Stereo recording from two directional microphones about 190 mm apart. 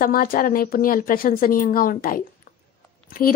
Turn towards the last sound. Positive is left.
turn(degrees=50)  # may be behind; listen again after turning